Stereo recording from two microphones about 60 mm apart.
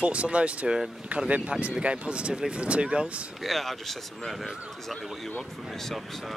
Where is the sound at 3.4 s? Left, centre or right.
Centre.